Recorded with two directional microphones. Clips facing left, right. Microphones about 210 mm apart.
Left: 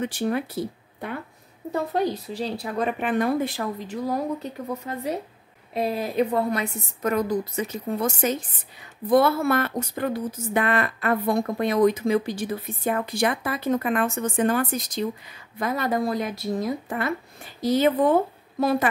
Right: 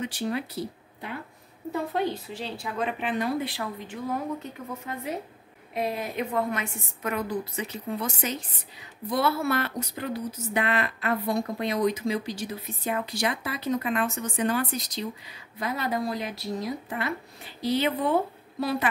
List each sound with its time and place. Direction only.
0.0 s speech: 50° left (ahead or behind)
1.7 s a woman's voice: 40° left (ahead or behind)